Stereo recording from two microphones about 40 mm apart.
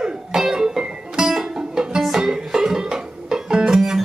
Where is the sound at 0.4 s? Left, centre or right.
Centre.